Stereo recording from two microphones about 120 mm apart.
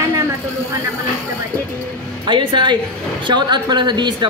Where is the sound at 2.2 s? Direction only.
40° right (ahead or behind).